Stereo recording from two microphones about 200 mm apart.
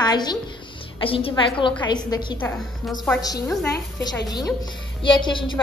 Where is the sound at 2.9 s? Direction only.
Centre (ahead or behind).